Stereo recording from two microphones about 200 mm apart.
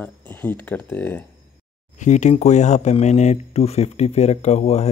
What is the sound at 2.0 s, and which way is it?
Speech, 35° left (ahead or behind).